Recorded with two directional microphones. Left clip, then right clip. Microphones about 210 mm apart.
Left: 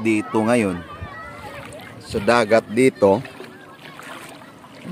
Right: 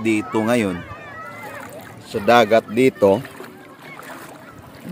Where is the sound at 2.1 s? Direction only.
10° left (ahead or behind).